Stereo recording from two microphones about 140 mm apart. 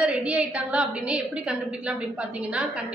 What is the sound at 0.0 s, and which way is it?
A woman's voice, 10° right (ahead or behind).